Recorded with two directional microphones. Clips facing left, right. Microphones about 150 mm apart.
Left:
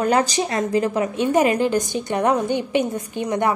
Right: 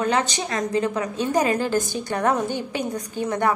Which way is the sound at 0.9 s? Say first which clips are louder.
Left 4 dB; 25° left (ahead or behind).